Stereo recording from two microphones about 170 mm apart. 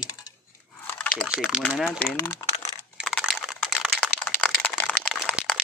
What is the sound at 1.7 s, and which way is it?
Speech, 5° right (ahead or behind).